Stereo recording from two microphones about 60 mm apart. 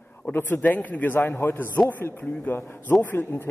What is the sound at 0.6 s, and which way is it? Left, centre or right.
A man's voice, left.